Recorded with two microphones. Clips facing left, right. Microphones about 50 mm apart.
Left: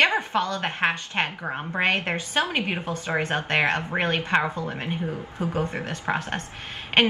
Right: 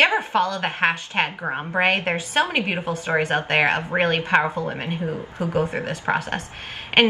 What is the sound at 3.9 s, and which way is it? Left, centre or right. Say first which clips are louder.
Speech: right 6 dB; right.